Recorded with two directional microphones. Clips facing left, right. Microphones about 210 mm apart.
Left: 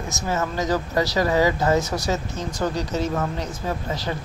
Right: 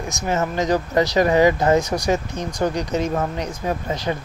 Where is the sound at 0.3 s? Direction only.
20° right (ahead or behind).